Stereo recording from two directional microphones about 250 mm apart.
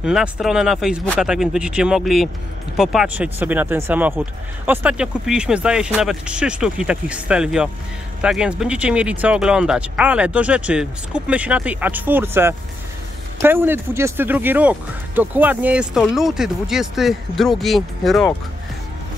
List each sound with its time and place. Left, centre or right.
0.0 s speech: centre